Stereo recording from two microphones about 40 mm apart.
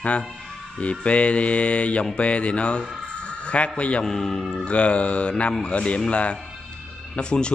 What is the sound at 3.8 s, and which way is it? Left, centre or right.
Mantra, left.